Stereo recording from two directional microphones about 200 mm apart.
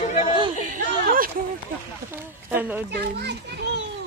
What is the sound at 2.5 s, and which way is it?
Speech, 10° right (ahead or behind).